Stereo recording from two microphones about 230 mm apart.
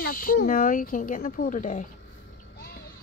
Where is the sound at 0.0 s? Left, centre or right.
Left.